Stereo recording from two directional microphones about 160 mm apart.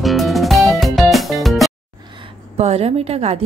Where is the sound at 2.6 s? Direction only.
40° right (ahead or behind).